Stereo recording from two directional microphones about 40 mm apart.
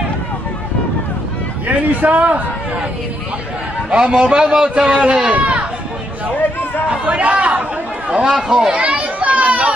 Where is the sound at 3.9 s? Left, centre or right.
Centre.